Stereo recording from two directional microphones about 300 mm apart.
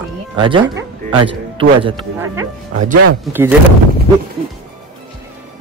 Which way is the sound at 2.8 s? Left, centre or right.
Right.